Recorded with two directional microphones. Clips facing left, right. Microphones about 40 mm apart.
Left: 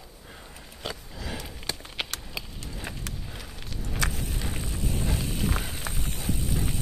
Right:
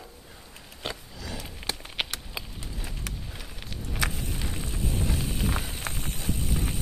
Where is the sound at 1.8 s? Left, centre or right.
Centre.